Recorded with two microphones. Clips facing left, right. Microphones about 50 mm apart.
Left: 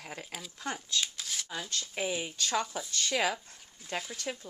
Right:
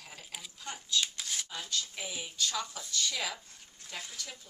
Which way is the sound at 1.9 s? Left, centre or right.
Left.